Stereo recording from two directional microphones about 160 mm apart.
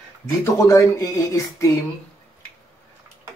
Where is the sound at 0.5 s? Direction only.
20° left (ahead or behind).